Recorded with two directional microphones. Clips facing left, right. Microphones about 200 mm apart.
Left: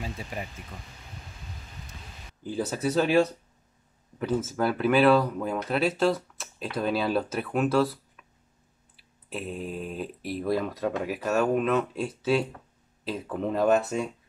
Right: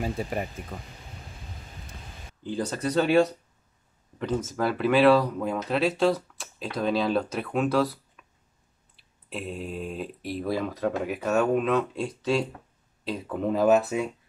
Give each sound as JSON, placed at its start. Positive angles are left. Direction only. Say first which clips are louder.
{"t": 0.0, "sound": "speech", "louder": "right 6 dB", "side_deg": -50}
{"t": 2.4, "sound": "speech", "louder": "even", "side_deg": 5}